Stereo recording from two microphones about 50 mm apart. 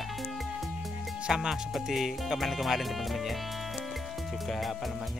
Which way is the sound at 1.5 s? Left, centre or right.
Centre.